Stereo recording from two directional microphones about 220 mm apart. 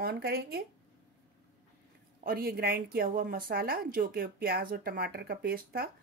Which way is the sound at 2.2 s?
45° right (ahead or behind).